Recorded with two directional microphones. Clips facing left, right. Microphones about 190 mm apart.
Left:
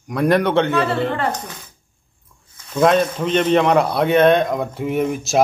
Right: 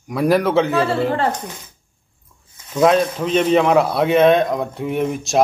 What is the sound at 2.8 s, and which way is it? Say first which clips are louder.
A man's voice: right 1 dB; centre (ahead or behind).